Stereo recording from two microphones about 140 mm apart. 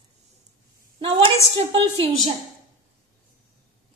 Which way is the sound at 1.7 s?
40° right (ahead or behind).